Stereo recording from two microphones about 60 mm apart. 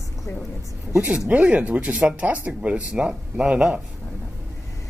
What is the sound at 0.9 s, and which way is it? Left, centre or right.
Speech, centre.